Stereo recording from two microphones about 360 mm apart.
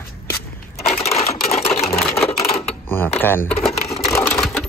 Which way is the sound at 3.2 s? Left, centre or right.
Centre.